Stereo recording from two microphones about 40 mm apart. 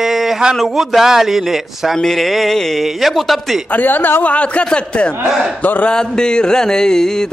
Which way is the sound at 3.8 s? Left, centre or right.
Left.